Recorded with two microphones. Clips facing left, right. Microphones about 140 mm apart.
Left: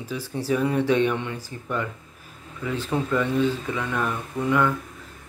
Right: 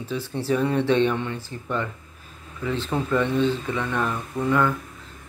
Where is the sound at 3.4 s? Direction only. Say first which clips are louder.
Right 1 dB; 5° left (ahead or behind).